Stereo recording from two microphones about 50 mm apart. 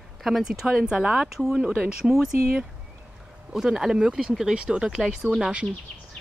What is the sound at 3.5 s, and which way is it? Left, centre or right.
Speech, centre.